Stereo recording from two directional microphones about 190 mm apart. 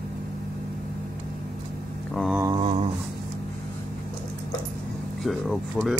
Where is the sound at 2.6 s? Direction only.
35° right (ahead or behind).